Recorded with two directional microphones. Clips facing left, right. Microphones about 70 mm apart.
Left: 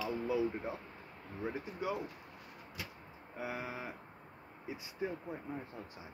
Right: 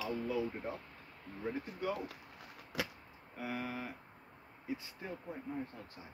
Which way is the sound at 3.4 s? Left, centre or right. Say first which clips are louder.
Even; centre.